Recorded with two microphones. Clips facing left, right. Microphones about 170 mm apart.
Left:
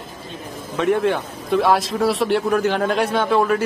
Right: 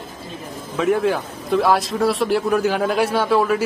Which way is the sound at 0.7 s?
Centre (ahead or behind).